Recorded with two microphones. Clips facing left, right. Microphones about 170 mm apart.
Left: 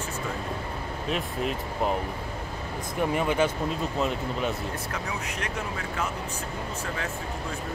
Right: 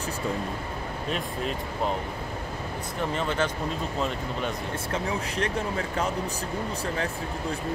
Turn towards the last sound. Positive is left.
turn(degrees=-30)  # may be behind; listen again after turning